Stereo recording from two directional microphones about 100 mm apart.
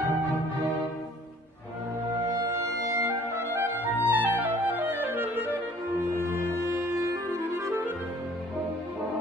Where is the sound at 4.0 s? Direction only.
20° right (ahead or behind).